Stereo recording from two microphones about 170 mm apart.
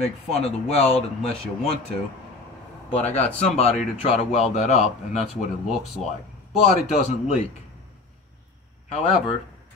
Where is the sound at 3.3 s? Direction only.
40° left (ahead or behind).